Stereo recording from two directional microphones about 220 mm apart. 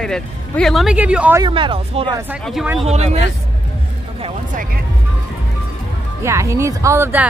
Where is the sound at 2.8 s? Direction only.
30° right (ahead or behind).